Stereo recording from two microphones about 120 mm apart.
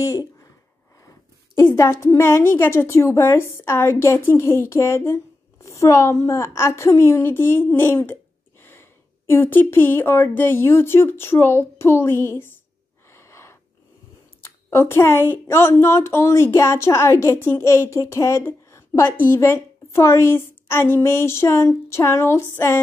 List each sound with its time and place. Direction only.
0.0 s speech: 25° left (ahead or behind)
1.6 s a woman's voice: 25° left (ahead or behind)
13.1 s gasp: 25° left (ahead or behind)
14.4 s a woman's voice: 20° left (ahead or behind)